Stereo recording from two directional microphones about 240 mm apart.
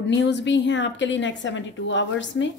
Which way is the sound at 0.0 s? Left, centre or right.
Left.